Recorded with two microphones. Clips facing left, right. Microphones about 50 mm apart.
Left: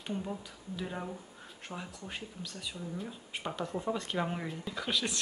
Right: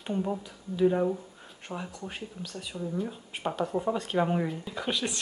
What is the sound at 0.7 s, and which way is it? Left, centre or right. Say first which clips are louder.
Speech: right 15 dB; centre.